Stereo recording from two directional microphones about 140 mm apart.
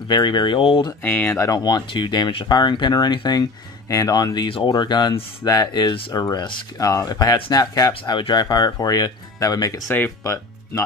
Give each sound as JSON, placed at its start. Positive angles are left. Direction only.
{"t": 0.1, "sound": "speech", "side_deg": 30}
{"t": 1.0, "sound": "speech", "side_deg": 15}
{"t": 7.9, "sound": "speech", "side_deg": 40}